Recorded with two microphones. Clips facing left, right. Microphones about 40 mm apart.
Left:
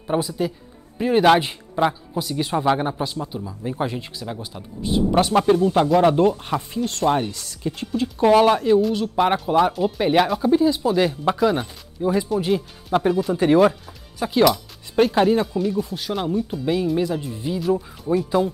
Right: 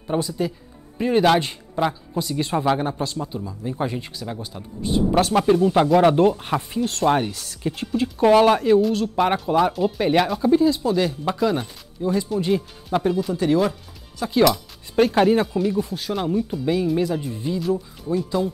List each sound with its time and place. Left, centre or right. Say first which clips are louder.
0.1 s speech: left 1 dB; centre
5.4 s speech: even; centre
13.3 s speech: left 6 dB; left
14.3 s speech: even; centre
17.7 s speech: left 3 dB; centre